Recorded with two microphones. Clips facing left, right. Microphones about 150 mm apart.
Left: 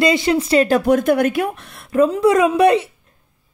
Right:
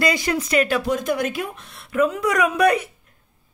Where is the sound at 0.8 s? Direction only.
60° left (ahead or behind).